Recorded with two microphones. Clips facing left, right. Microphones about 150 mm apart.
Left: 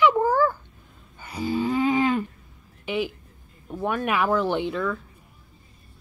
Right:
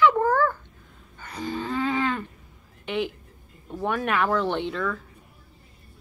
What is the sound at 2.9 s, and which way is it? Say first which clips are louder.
Speech: left 1 dB; 5° left (ahead or behind).